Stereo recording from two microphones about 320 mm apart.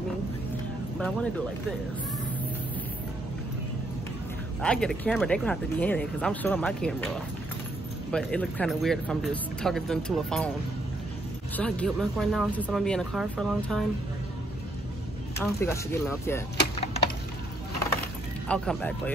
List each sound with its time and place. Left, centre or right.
0.9 s speech: centre
4.6 s speech: centre
11.5 s speech: centre
15.3 s speech: centre
18.5 s speech: centre